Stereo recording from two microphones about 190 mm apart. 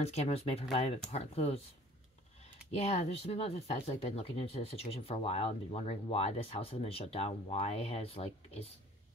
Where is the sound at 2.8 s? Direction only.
35° left (ahead or behind).